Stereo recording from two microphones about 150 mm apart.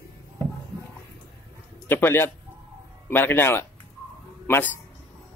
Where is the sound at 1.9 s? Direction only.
15° left (ahead or behind).